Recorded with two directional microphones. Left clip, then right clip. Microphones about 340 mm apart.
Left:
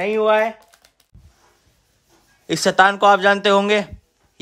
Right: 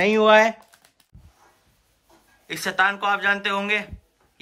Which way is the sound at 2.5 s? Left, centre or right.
Centre.